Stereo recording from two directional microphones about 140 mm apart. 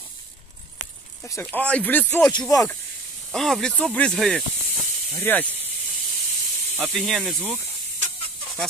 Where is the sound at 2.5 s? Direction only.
25° left (ahead or behind).